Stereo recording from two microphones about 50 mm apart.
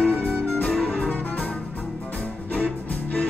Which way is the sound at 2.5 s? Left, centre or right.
Left.